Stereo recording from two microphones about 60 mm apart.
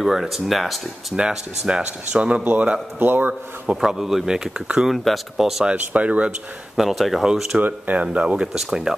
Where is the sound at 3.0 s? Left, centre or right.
Right.